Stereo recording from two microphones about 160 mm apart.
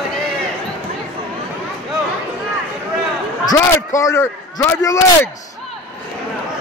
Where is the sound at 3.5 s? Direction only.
20° left (ahead or behind).